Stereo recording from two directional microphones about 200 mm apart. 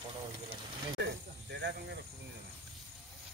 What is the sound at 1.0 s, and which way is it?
Speech, 55° right (ahead or behind).